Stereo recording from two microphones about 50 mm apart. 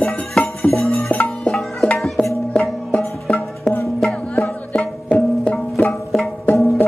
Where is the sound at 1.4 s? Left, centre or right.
Centre.